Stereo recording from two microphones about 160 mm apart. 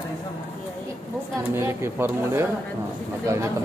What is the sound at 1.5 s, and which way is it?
Speech, 15° right (ahead or behind).